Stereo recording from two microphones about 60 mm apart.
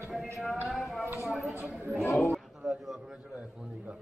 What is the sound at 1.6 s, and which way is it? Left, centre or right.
Speech, right.